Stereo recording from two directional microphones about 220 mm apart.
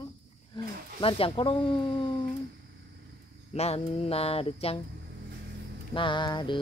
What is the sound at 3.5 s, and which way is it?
Speech, 30° left (ahead or behind).